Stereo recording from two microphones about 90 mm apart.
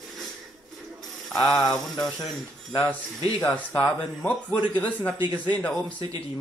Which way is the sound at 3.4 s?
15° left (ahead or behind).